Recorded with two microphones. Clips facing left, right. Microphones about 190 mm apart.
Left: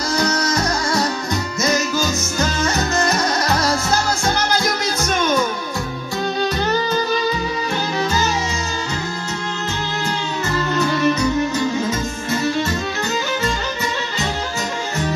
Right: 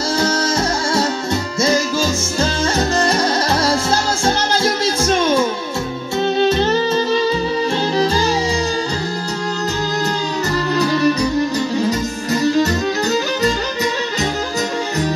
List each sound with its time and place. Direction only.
0.1 s music: 25° right (ahead or behind)
10.7 s music: 35° right (ahead or behind)